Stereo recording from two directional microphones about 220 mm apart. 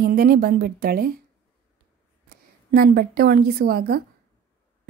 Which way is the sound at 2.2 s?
45° right (ahead or behind).